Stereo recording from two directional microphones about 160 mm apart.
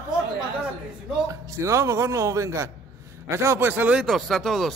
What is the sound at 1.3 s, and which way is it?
A man's voice, 20° right (ahead or behind).